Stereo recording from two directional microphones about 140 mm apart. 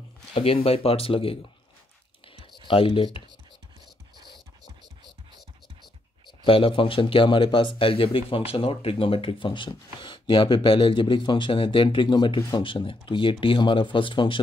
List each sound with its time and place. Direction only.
0.3 s speech: 45° left (ahead or behind)
2.7 s speech: 40° left (ahead or behind)
6.2 s speech: 40° left (ahead or behind)